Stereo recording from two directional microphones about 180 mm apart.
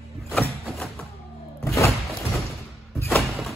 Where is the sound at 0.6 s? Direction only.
Centre (ahead or behind).